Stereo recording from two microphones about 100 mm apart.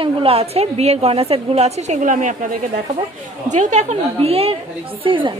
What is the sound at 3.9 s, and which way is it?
Speech, 80° right.